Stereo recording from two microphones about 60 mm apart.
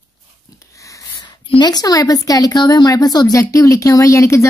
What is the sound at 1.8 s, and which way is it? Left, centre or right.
A woman's voice, left.